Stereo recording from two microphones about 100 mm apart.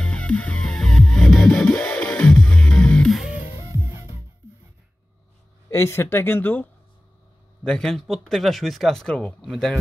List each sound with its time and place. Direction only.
0.0 s music: 10° left (ahead or behind)
3.6 s music: 30° right (ahead or behind)
5.7 s speech: 30° left (ahead or behind)
7.6 s speech: 5° left (ahead or behind)